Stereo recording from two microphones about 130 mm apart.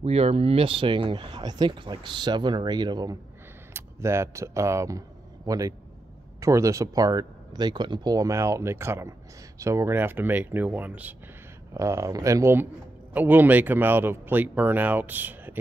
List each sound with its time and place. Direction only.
0.0 s speech: 50° right (ahead or behind); by 3.2 s 30° right (ahead or behind)
3.7 s speech: 20° right (ahead or behind)
11.7 s speech: 25° right (ahead or behind)